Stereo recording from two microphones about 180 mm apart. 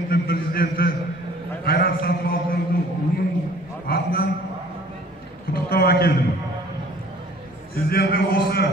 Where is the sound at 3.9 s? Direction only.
55° left (ahead or behind).